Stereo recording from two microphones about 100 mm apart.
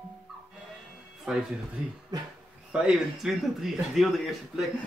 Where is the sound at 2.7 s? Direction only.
10° right (ahead or behind).